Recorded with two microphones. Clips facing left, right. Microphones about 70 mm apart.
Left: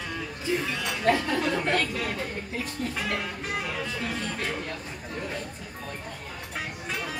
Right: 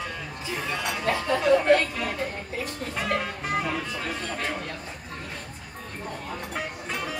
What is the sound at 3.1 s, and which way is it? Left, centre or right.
Music, right.